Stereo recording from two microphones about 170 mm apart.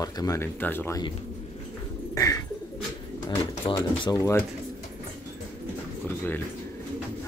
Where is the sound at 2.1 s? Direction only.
20° left (ahead or behind).